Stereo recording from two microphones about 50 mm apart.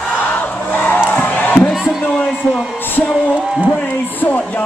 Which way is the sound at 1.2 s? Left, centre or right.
Left.